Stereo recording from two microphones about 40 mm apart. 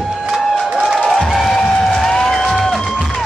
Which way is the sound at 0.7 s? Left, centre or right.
Right.